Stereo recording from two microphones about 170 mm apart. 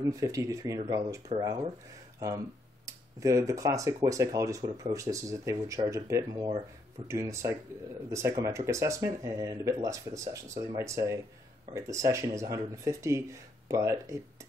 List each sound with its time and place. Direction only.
0.1 s speech: 20° right (ahead or behind)